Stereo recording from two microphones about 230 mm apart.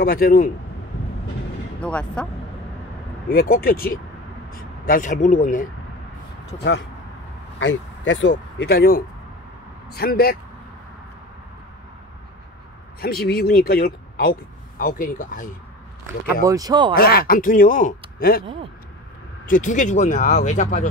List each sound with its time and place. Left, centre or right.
0.0 s speech: left
1.8 s speech: centre
3.3 s speech: left
7.5 s speech: left
13.0 s speech: left
16.3 s speech: centre
16.9 s speech: left
19.4 s speech: left